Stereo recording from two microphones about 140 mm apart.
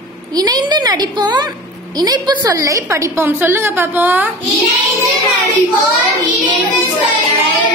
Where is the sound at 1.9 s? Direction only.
30° right (ahead or behind); by 4.3 s 15° right (ahead or behind).